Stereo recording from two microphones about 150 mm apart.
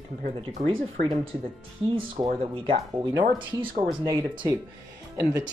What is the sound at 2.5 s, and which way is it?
Speech, 35° right (ahead or behind).